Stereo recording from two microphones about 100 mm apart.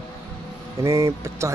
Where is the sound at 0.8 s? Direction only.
30° right (ahead or behind).